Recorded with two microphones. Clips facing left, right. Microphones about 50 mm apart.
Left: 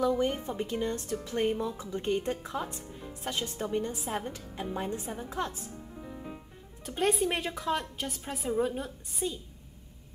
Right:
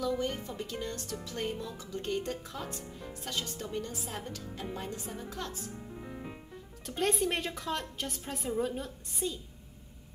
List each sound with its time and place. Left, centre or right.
0.1 s speech: left
6.9 s a woman's voice: centre